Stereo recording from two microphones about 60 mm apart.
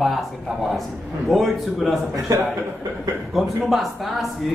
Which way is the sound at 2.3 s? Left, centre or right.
Right.